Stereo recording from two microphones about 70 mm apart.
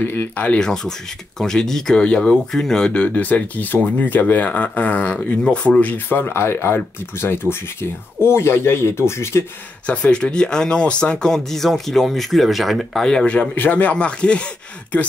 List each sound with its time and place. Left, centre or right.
0.0 s speech: left
0.6 s speech: centre; by 9.4 s left
9.8 s speech: centre